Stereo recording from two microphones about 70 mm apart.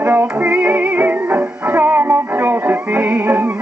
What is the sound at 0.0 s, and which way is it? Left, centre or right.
Music, right.